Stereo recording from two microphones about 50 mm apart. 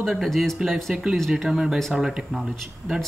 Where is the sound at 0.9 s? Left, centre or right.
Centre.